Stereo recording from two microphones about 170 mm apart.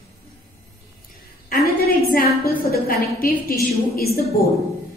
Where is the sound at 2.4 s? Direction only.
60° left (ahead or behind).